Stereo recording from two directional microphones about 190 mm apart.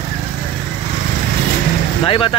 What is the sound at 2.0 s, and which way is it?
Speech, 30° left (ahead or behind).